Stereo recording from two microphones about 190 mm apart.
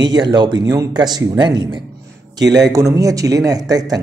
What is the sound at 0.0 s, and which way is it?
Speech, 20° right (ahead or behind).